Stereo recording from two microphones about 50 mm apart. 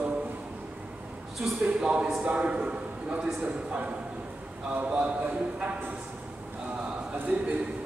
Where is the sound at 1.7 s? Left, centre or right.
Right.